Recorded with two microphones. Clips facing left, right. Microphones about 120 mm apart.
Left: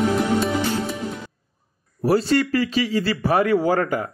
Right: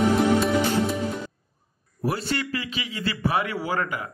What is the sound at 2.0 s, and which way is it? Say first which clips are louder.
Speech: left 9 dB; 35° left (ahead or behind).